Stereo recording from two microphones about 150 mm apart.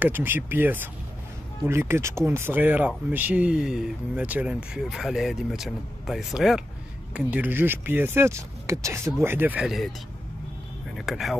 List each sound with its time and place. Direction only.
0.0 s speech: 15° right (ahead or behind)
11.0 s speech: centre (ahead or behind)